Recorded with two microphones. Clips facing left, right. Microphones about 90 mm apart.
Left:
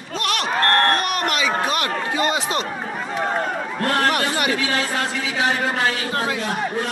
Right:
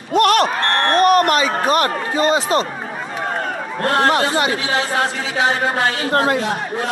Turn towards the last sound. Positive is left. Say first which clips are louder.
# right 7 dB
turn(degrees=-55)  # may be behind; listen again after turning